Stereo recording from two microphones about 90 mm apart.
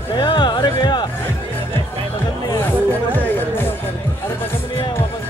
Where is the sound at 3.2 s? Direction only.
20° left (ahead or behind).